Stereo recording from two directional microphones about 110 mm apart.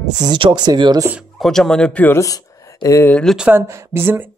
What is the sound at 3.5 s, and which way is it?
Speech, 25° right (ahead or behind).